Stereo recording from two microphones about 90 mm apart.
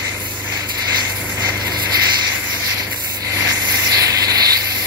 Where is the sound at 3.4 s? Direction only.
40° right (ahead or behind).